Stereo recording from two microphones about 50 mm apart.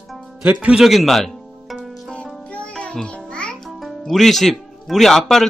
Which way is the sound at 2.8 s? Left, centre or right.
Centre.